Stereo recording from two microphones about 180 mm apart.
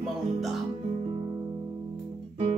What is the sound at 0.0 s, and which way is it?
Music, centre (ahead or behind).